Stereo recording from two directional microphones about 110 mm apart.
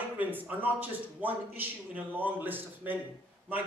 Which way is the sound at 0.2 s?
15° right (ahead or behind).